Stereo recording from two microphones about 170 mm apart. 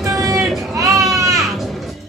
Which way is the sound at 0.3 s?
Centre (ahead or behind).